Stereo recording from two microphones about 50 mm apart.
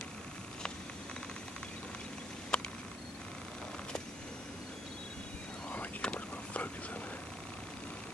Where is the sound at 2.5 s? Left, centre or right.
Centre.